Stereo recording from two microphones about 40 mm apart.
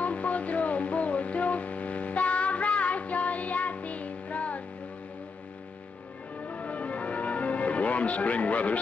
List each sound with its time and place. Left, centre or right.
0.0 s music: left
6.4 s change ringing: left